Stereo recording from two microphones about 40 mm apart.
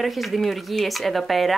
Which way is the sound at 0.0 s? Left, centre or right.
Centre.